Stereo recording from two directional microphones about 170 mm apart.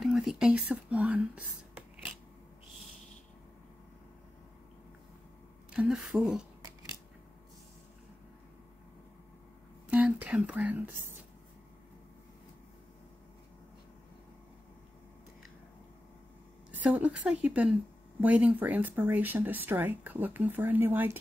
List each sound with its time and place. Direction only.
0.0 s speech: centre (ahead or behind)
5.7 s a woman's voice: 5° right (ahead or behind)
9.8 s speech: 5° right (ahead or behind)
16.7 s speech: 10° right (ahead or behind)